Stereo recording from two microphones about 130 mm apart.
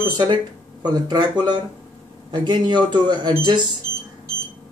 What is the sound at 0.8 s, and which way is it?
Speech, 35° right (ahead or behind).